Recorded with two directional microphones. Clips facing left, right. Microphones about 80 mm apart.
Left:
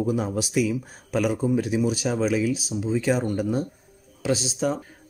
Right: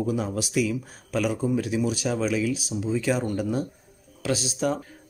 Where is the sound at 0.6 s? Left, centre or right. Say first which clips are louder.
Left 2 dB; left.